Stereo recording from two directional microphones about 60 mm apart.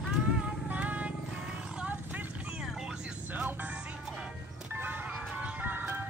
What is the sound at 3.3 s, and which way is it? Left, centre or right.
Music, right.